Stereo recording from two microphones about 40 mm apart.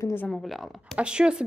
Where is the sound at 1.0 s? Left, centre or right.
Right.